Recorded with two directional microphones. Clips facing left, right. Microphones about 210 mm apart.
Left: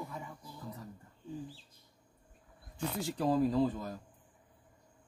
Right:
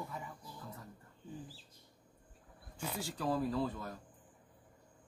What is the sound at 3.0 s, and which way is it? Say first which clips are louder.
Speech: left 6 dB; 20° left (ahead or behind).